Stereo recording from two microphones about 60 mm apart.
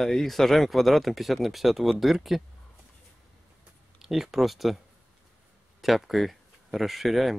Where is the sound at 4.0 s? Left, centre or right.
Centre.